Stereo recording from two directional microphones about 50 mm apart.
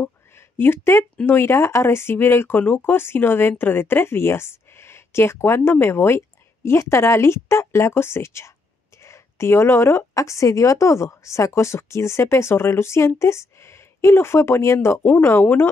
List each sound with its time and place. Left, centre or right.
0.3 s a sound: left
1.2 s speech: left
15.4 s a woman's voice: left